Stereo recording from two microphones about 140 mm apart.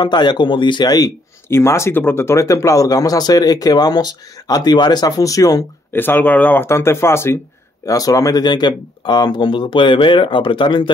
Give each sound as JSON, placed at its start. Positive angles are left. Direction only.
{"t": 0.0, "sound": "speech", "side_deg": 30}
{"t": 5.9, "sound": "speech", "side_deg": 10}